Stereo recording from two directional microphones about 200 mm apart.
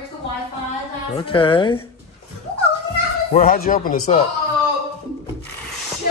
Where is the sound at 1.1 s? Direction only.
25° left (ahead or behind).